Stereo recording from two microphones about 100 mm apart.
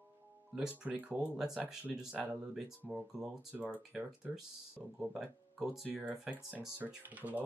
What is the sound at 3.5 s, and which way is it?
Speech, 15° right (ahead or behind).